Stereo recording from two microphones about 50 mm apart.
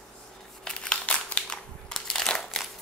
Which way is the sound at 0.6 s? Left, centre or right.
Centre.